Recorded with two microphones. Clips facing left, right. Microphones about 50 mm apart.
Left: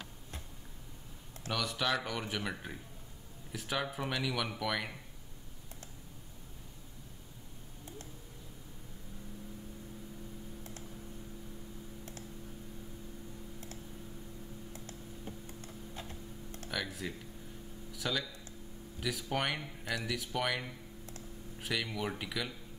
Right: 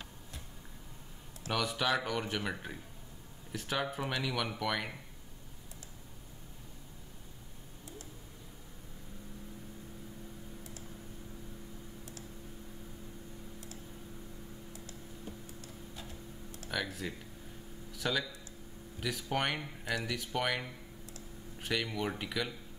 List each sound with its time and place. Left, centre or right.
1.5 s speech: centre
16.7 s speech: centre